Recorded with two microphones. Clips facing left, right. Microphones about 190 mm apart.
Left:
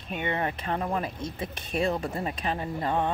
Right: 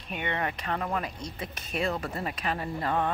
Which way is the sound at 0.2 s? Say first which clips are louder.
Left 2 dB; 25° left (ahead or behind).